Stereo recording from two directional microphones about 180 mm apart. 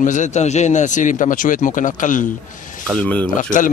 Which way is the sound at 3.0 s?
10° left (ahead or behind).